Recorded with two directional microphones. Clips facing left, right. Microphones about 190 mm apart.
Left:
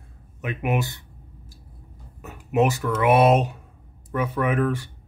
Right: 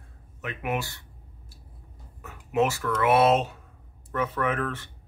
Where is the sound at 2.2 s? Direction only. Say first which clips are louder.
Left 3 dB; 20° left (ahead or behind).